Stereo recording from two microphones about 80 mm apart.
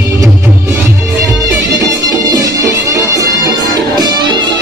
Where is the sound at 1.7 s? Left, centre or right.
Right.